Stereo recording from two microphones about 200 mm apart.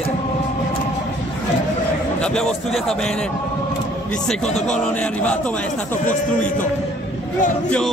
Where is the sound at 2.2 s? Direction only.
5° left (ahead or behind).